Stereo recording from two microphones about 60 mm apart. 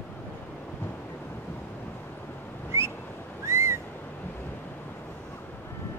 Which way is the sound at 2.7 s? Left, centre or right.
Right.